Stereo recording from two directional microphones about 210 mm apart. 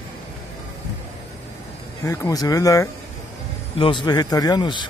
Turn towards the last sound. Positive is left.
turn(degrees=20)  # may be behind; listen again after turning